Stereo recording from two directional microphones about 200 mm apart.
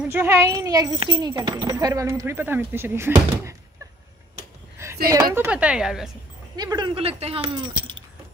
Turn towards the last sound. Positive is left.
turn(degrees=-25)  # may be behind; listen again after turning